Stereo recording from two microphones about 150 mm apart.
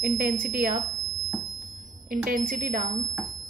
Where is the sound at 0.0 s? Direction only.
65° right (ahead or behind).